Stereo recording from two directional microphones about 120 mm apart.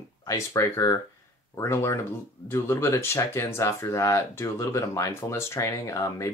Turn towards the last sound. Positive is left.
turn(degrees=25)  # may be behind; listen again after turning